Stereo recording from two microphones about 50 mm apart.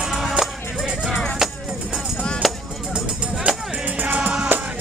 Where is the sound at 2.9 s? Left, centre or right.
Centre.